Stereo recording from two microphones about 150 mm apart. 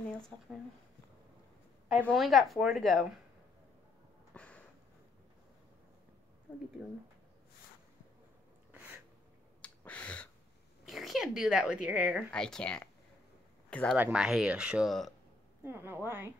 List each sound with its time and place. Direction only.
2.0 s speech: centre (ahead or behind)
4.3 s a sound: 10° left (ahead or behind)
9.6 s finger snapping: 10° left (ahead or behind)
10.9 s speech: centre (ahead or behind)
12.3 s speech: 5° left (ahead or behind)
13.9 s speech: 10° right (ahead or behind)
15.6 s speech: 15° right (ahead or behind)